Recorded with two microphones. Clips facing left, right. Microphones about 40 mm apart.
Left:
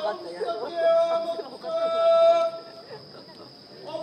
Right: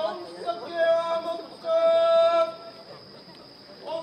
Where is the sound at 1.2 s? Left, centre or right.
Right.